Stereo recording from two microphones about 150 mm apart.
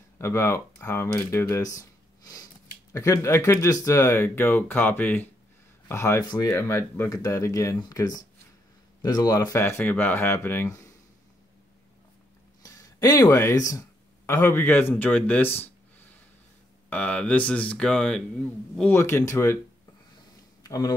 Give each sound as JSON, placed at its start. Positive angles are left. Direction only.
{"t": 0.2, "sound": "speech", "side_deg": 20}
{"t": 6.5, "sound": "speech", "side_deg": 15}
{"t": 12.6, "sound": "speech", "side_deg": 25}
{"t": 16.9, "sound": "speech", "side_deg": 10}
{"t": 20.6, "sound": "speech", "side_deg": 25}